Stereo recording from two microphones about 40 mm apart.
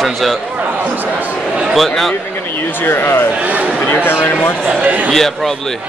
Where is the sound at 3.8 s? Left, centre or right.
Left.